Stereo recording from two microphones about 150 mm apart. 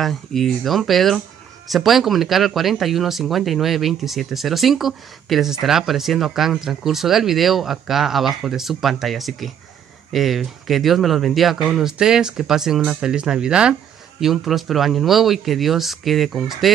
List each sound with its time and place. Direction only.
0.0 s speech: centre (ahead or behind)